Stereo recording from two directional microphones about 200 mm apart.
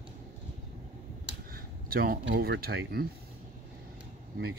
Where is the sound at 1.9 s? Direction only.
50° right (ahead or behind).